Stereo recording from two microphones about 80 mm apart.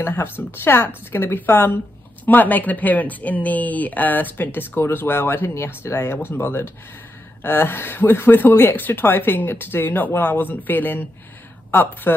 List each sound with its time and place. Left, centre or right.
0.0 s speech: left